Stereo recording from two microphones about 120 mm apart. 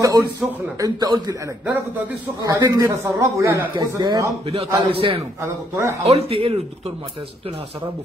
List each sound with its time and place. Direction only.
0.0 s a man's voice: 30° right (ahead or behind)
2.4 s a man's voice: 35° right (ahead or behind)
4.8 s a man's voice: 50° right (ahead or behind)
5.4 s a man's voice: 25° right (ahead or behind)
6.0 s speech: 55° right (ahead or behind)